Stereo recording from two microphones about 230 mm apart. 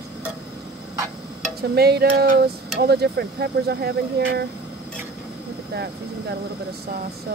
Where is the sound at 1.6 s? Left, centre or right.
Right.